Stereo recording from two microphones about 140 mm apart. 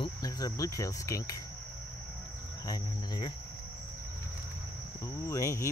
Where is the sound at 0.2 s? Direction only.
25° left (ahead or behind).